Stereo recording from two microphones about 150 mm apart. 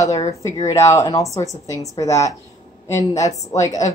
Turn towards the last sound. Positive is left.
turn(degrees=20)  # may be behind; listen again after turning